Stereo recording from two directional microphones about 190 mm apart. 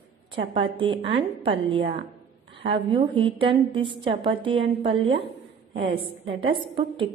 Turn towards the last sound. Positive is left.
turn(degrees=-25)  # may be behind; listen again after turning